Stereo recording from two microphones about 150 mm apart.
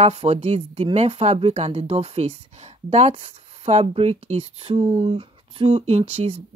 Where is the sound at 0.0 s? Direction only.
45° right (ahead or behind).